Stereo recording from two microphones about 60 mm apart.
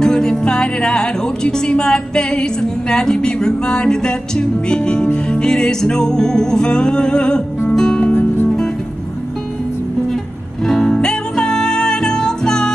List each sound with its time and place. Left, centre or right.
0.0 s speech: centre
7.7 s music: centre
8.1 s music: left
10.6 s music: centre